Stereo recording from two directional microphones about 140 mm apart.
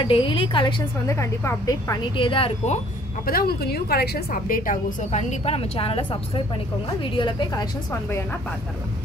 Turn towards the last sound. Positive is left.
turn(degrees=30)  # may be behind; listen again after turning